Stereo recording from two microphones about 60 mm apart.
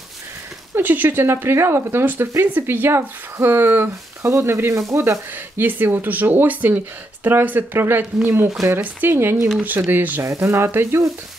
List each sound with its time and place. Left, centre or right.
0.7 s speech: right
4.2 s frying: right
4.7 s speech: right
5.6 s speech: right
10.4 s speech: right
10.7 s frying: right